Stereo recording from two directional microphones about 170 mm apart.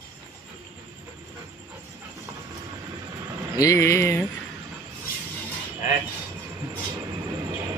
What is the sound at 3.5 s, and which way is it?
Speech, 20° left (ahead or behind).